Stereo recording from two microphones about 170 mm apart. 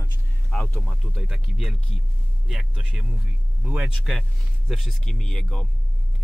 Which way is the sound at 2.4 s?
Centre (ahead or behind).